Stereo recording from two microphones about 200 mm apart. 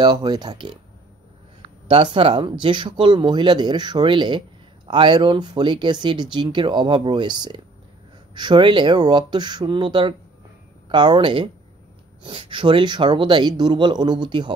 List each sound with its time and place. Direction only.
0.0 s speech: 20° right (ahead or behind)
2.1 s speech: 25° right (ahead or behind)